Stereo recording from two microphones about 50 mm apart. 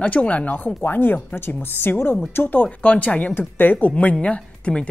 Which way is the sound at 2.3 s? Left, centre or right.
Left.